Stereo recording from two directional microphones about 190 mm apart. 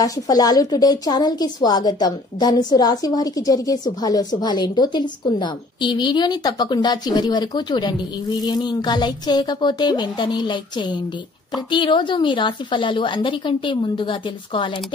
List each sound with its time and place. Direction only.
0.0 s a woman's voice: 20° left (ahead or behind)